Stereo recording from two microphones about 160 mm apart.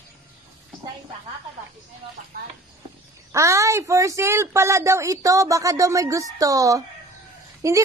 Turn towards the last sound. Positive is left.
turn(degrees=-20)  # may be behind; listen again after turning